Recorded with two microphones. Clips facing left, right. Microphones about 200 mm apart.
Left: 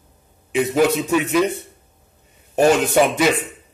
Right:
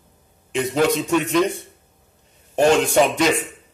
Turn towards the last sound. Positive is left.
turn(degrees=5)  # may be behind; listen again after turning